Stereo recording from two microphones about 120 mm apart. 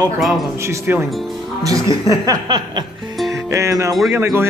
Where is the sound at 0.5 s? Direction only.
25° right (ahead or behind).